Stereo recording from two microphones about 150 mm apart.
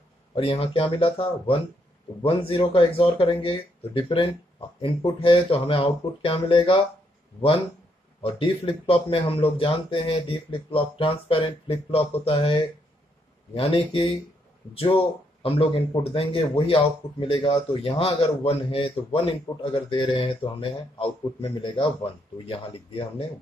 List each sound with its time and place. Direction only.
0.4 s speech: 40° left (ahead or behind)
8.2 s speech: 40° left (ahead or behind)